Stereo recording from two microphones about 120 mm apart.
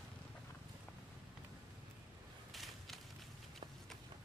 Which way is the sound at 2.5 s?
Centre (ahead or behind).